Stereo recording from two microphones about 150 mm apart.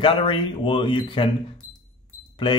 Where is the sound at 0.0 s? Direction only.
35° left (ahead or behind).